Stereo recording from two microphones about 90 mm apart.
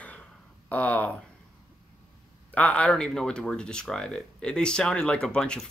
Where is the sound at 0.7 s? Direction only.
15° left (ahead or behind).